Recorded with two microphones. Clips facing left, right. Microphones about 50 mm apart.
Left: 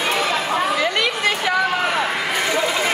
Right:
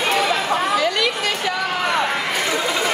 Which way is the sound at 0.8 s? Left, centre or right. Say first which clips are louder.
Even; left.